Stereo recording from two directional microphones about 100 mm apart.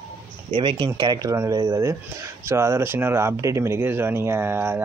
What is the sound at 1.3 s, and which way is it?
Speech, 30° right (ahead or behind).